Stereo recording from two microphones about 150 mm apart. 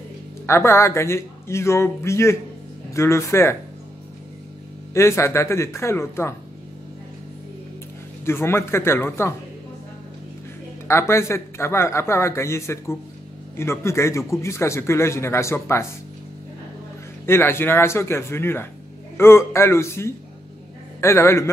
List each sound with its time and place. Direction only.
0.5 s a man's voice: 15° left (ahead or behind)
4.9 s a man's voice: 20° left (ahead or behind)
8.3 s a man's voice: 15° left (ahead or behind)
10.9 s a man's voice: 20° left (ahead or behind)
17.3 s a man's voice: 15° left (ahead or behind)